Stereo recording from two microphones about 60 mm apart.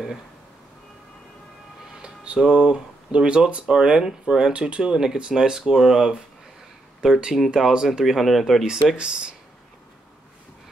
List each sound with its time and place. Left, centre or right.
2.0 s speech: centre
8.9 s speech: centre